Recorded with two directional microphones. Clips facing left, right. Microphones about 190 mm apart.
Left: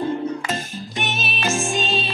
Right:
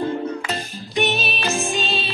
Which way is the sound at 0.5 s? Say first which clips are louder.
Left 1 dB; 45° left (ahead or behind).